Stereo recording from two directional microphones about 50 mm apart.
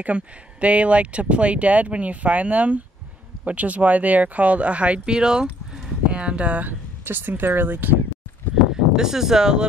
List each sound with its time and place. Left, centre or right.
0.0 s speech: right
7.1 s speech: right
8.9 s speech: centre